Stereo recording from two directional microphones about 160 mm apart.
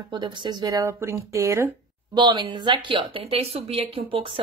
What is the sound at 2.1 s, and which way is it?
Speech, 30° right (ahead or behind).